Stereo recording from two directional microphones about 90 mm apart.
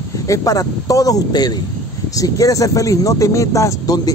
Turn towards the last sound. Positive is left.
turn(degrees=45)  # may be behind; listen again after turning